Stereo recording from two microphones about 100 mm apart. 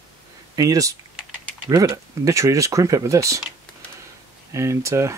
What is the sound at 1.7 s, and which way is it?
Speech, 45° right (ahead or behind).